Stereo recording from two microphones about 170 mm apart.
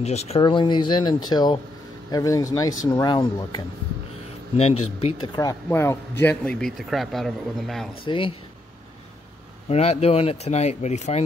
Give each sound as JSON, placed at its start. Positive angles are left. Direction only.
{"t": 0.0, "sound": "speech", "side_deg": 40}
{"t": 0.4, "sound": "speech", "side_deg": 30}
{"t": 4.6, "sound": "speech", "side_deg": 35}
{"t": 8.0, "sound": "speech", "side_deg": 30}
{"t": 9.7, "sound": "speech", "side_deg": 40}